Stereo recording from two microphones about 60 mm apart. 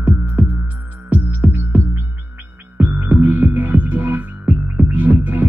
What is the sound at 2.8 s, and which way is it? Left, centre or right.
Music, right.